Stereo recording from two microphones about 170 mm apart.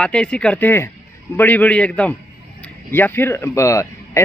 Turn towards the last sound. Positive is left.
turn(degrees=15)  # may be behind; listen again after turning